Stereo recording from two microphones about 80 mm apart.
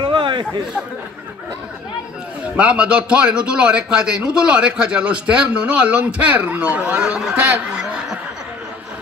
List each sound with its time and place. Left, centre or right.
0.0 s a sound: right
2.5 s a man's voice: centre
7.3 s snicker: right